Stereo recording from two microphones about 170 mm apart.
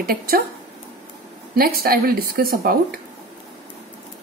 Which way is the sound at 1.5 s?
65° right (ahead or behind).